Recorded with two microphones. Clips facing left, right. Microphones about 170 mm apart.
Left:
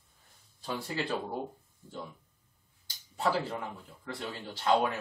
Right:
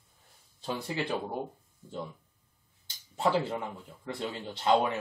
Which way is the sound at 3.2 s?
25° right (ahead or behind).